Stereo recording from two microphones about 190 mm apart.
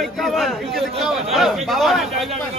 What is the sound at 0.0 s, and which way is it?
A man's voice, centre (ahead or behind).